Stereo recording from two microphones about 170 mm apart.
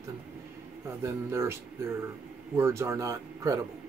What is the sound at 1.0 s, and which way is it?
Speech, 15° right (ahead or behind).